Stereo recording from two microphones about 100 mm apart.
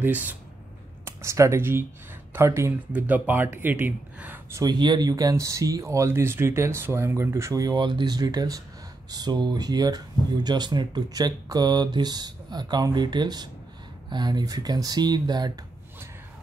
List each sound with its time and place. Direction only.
0.0 s speech: 15° right (ahead or behind)
1.0 s speech: 30° right (ahead or behind)
2.9 s speech: 15° right (ahead or behind)
4.6 s speech: 45° right (ahead or behind)